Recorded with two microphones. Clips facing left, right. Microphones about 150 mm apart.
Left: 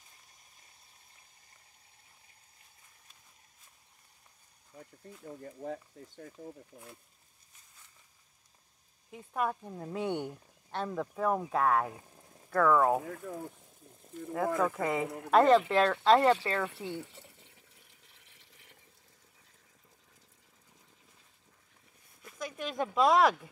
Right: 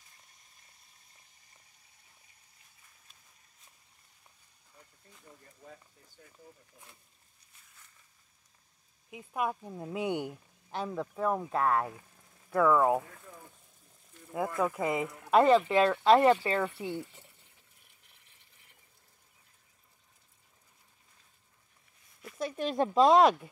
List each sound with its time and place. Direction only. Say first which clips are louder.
5.4 s speech: left 15 dB; 70° left (ahead or behind)
9.1 s speech: even; 10° right (ahead or behind)
13.0 s speech: left 11 dB; 60° left (ahead or behind)
14.6 s speech: even; 10° right (ahead or behind)
18.0 s a sound: left 4 dB; 90° left
22.4 s speech: right 5 dB; 30° right (ahead or behind)